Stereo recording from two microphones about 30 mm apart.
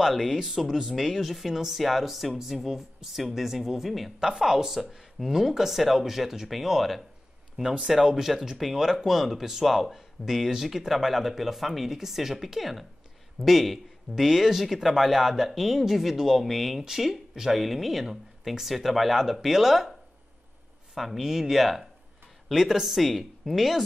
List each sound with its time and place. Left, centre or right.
0.1 s speech: centre
4.2 s speech: centre
9.0 s speech: centre
16.8 s speech: centre
20.9 s speech: centre